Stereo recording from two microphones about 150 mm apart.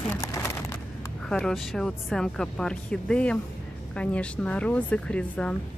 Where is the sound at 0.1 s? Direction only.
15° left (ahead or behind).